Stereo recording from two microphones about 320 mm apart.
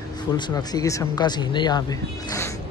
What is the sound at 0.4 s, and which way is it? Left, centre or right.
Speech, centre.